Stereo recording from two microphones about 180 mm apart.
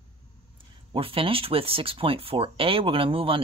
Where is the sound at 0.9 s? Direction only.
30° right (ahead or behind).